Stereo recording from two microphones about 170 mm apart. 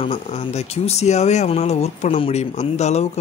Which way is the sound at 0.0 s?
35° left (ahead or behind).